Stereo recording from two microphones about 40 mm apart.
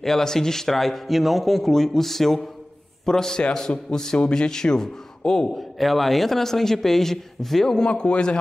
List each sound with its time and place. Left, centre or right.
0.0 s a man's voice: centre
5.5 s a man's voice: centre
7.9 s a man's voice: left